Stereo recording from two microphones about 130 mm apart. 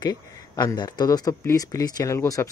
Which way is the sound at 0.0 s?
30° left (ahead or behind).